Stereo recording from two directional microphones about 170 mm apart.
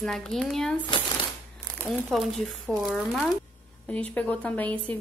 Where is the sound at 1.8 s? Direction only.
Centre (ahead or behind).